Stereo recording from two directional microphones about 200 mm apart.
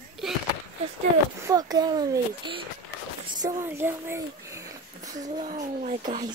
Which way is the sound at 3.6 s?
10° right (ahead or behind).